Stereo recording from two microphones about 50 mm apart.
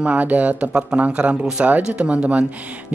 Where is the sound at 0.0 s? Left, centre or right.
Right.